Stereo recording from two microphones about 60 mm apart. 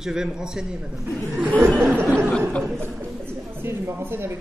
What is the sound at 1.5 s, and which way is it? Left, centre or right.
Speech, right.